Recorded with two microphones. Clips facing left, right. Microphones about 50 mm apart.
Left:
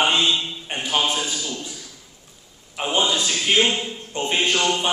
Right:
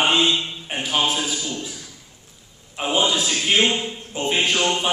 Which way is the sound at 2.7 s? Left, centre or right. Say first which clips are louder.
Right 1 dB; centre.